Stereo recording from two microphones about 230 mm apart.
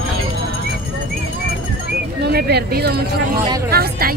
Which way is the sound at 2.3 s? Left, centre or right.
Right.